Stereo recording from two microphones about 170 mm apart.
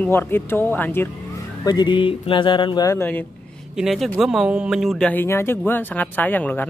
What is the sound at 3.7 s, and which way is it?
Speech, centre (ahead or behind).